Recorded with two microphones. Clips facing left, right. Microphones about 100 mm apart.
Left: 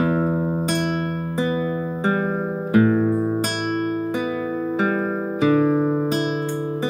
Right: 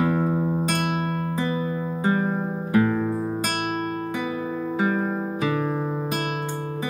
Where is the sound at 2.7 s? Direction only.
25° left (ahead or behind).